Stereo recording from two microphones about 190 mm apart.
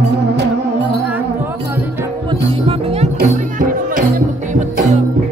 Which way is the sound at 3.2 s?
45° right (ahead or behind).